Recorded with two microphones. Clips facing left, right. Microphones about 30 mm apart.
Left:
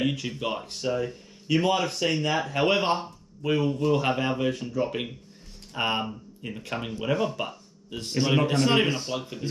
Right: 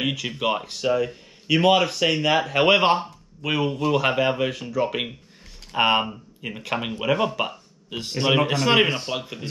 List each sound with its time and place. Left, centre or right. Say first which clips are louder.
0.3 s speech: right 6 dB; right
4.8 s speech: right 4 dB; right
7.3 s a sound: right 6 dB; right
8.2 s speech: right 2 dB; right